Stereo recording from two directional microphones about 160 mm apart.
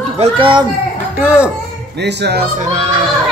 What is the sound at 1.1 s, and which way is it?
Speech, 10° right (ahead or behind).